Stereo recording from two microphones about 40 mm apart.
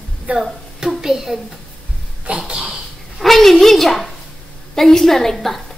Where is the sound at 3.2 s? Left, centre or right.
Centre.